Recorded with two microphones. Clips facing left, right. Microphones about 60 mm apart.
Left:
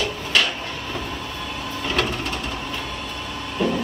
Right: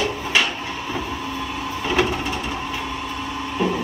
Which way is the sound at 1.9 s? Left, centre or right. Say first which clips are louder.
Right 3 dB; centre.